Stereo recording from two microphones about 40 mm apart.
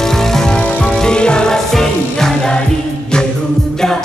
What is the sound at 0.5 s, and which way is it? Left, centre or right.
Music, left.